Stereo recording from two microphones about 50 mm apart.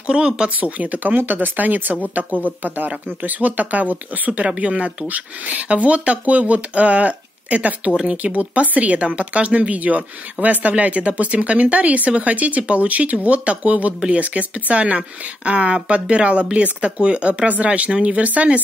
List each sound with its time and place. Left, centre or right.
0.0 s speech: centre
0.6 s speech: right
7.9 s speech: centre
8.2 s speech: right